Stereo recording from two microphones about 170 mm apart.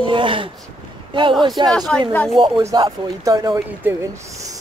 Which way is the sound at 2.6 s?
20° right (ahead or behind).